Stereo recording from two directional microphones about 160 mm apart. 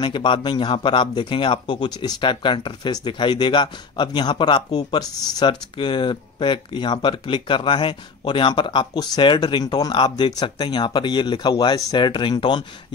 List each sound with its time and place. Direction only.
0.0 s speech: 30° left (ahead or behind)